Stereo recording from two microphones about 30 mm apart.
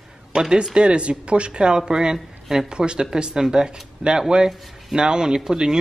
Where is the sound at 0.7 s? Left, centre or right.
Right.